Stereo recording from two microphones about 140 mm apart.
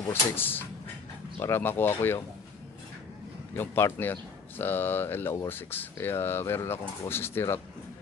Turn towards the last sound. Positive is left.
turn(degrees=15)  # may be behind; listen again after turning